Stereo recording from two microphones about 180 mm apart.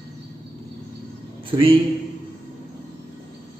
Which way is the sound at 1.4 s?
30° right (ahead or behind).